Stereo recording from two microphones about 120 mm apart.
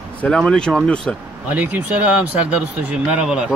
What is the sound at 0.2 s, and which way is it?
Speech, 5° left (ahead or behind).